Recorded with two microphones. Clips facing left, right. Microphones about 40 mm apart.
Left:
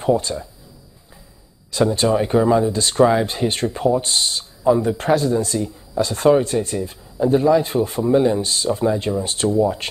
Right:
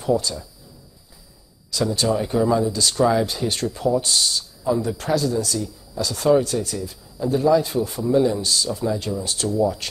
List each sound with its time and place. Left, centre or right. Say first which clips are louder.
0.0 s speech: left 3 dB; left
1.7 s speech: left 4 dB; left